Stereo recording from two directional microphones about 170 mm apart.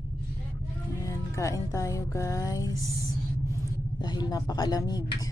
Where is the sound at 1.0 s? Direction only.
15° left (ahead or behind).